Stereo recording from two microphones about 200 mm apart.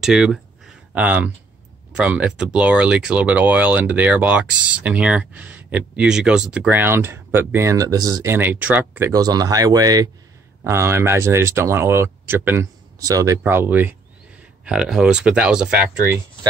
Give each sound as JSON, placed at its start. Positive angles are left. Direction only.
{"t": 0.0, "sound": "speech", "side_deg": -5}